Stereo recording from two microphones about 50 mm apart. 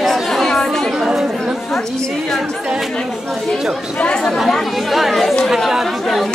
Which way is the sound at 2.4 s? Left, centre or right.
Centre.